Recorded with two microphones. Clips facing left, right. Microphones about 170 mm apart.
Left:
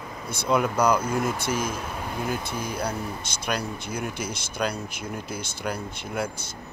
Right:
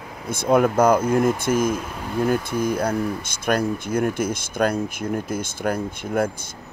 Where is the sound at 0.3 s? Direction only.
50° right (ahead or behind).